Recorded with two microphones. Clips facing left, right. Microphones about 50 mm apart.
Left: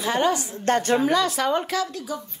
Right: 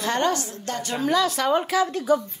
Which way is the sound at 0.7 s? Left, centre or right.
Left.